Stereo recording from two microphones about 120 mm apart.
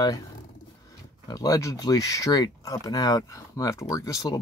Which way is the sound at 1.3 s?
30° left (ahead or behind).